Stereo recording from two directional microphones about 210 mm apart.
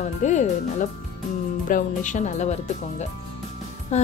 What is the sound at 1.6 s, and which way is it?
Speech, 40° left (ahead or behind).